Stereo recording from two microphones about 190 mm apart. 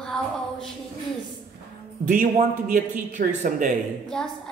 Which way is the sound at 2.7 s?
45° right (ahead or behind).